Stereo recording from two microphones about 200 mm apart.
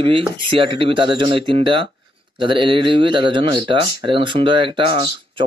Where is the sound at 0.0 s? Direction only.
25° right (ahead or behind).